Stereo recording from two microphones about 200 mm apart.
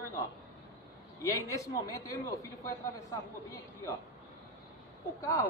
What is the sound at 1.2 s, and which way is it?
A man's voice, 15° left (ahead or behind).